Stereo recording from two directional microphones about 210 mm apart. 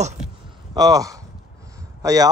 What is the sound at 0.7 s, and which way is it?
Speech, 15° right (ahead or behind).